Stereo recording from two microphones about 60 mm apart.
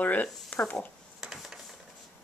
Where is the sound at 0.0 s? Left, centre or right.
Left.